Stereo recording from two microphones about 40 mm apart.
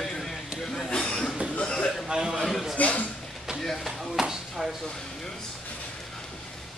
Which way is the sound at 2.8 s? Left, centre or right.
Left.